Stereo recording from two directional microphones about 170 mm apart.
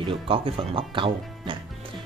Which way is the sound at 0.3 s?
30° right (ahead or behind).